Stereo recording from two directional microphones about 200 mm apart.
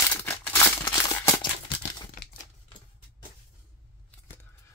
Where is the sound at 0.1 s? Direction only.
10° left (ahead or behind).